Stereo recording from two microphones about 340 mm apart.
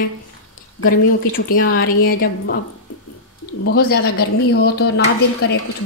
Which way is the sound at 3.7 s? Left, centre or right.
Left.